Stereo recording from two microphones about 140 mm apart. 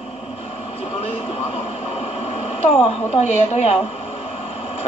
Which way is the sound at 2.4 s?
50° left (ahead or behind).